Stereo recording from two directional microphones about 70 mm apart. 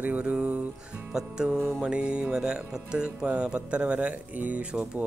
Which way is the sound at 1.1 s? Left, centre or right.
Centre.